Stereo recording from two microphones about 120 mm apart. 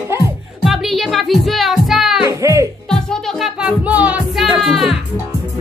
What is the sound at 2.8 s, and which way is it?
Music, 5° left (ahead or behind).